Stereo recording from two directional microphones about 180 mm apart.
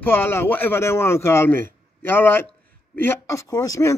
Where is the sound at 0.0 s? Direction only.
10° left (ahead or behind).